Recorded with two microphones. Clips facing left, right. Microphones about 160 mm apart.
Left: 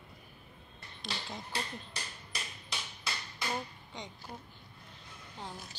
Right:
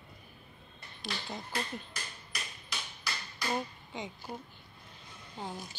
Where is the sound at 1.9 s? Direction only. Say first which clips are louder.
Even; 30° left (ahead or behind).